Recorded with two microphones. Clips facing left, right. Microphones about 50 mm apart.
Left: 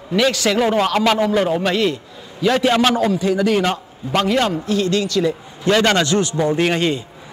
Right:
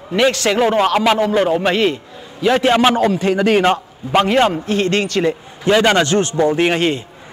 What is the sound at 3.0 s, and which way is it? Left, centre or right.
Speech, right.